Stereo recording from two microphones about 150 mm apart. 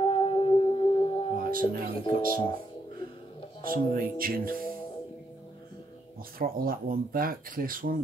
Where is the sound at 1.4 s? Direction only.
70° right (ahead or behind).